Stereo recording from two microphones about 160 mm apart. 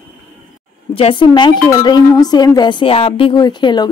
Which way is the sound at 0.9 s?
35° left (ahead or behind).